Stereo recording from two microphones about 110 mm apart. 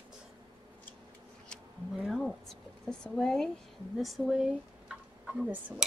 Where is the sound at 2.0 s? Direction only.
Centre (ahead or behind).